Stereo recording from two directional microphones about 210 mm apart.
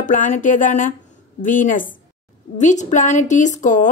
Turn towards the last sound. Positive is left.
turn(degrees=35)  # may be behind; listen again after turning